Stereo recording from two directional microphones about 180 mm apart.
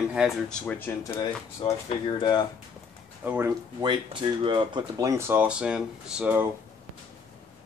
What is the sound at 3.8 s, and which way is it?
Speech, 25° right (ahead or behind).